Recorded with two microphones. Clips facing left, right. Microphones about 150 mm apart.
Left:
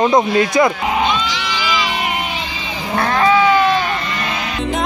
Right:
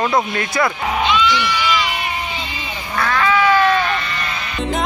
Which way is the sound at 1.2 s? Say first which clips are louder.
Right 5 dB; 90° left.